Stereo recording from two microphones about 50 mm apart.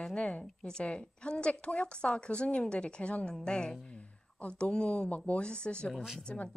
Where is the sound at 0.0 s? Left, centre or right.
Left.